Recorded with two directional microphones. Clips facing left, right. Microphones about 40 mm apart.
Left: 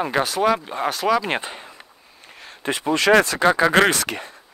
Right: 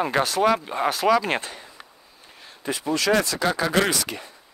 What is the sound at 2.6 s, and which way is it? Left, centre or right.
Speech, left.